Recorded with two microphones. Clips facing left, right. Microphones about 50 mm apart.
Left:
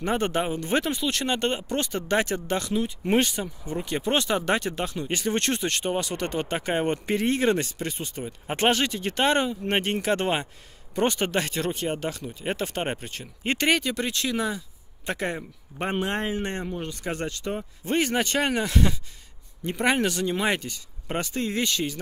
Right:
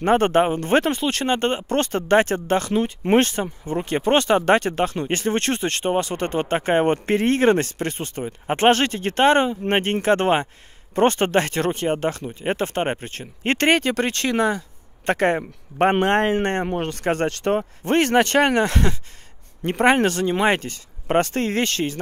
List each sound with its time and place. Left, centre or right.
0.0 s speech: right